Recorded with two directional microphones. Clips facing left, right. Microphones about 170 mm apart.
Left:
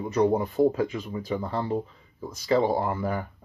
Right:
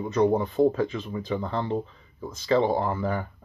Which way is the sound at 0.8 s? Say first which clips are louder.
Even; 25° right (ahead or behind).